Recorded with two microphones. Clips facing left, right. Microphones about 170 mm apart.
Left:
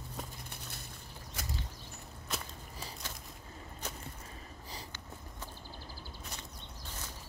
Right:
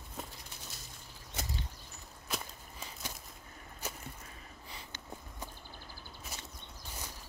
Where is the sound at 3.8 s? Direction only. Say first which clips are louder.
Right 1 dB; 10° right (ahead or behind).